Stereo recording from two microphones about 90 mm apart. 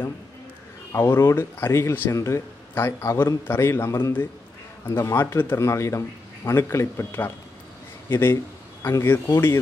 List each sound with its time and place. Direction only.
0.9 s speech: 30° left (ahead or behind)